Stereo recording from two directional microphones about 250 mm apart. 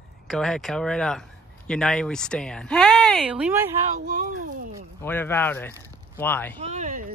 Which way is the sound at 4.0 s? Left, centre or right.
Right.